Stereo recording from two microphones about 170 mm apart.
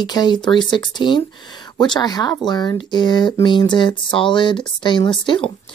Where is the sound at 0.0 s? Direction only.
25° left (ahead or behind).